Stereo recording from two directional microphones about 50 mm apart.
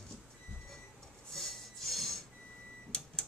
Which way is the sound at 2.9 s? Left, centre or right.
Centre.